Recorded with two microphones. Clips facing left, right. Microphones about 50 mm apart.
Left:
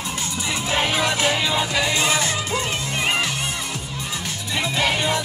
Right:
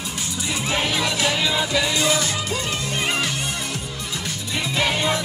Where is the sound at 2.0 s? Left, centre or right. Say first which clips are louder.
Even; left.